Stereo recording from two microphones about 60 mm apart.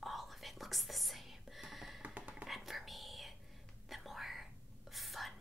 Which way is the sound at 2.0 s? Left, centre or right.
Right.